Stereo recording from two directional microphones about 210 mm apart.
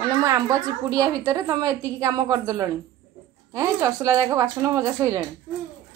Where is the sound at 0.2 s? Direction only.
15° right (ahead or behind).